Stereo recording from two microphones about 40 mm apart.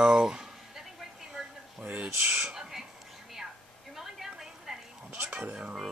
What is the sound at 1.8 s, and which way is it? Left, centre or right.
Speech, right.